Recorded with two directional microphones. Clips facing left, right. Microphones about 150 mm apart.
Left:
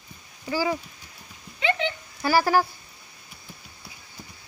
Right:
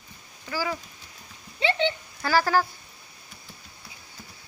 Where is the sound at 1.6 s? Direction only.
30° right (ahead or behind).